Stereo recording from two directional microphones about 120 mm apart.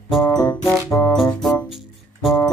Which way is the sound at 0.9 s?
25° left (ahead or behind).